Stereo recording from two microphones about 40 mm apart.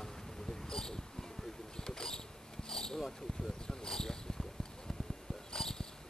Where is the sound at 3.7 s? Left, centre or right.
Centre.